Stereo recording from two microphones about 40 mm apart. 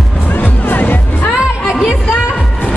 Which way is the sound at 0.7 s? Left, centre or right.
Left.